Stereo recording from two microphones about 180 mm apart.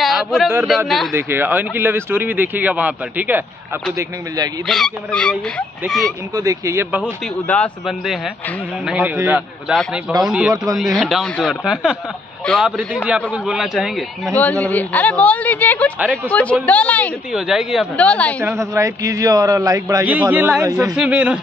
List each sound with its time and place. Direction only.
0.0 s a sound: centre (ahead or behind)
0.7 s speech: centre (ahead or behind)
1.1 s speech: 10° right (ahead or behind)
4.6 s speech: centre (ahead or behind)
6.3 s speech: 20° right (ahead or behind)
7.0 s a man's voice: 10° left (ahead or behind)
8.8 s a man's voice: 10° right (ahead or behind); by 17.1 s 10° left (ahead or behind)
17.3 s speech: 5° right (ahead or behind)
18.4 s speech: 15° right (ahead or behind)
20.1 s speech: 10° right (ahead or behind)